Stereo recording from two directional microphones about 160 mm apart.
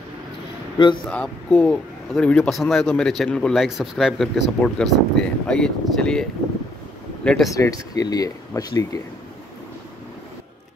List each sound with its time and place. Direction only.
1.1 s a man's voice: 5° left (ahead or behind)
7.2 s a man's voice: centre (ahead or behind)
7.5 s speech: 20° left (ahead or behind)